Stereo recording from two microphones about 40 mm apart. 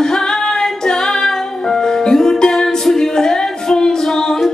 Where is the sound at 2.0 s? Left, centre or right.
Centre.